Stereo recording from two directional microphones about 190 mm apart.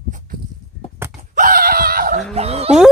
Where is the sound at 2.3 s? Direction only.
35° right (ahead or behind).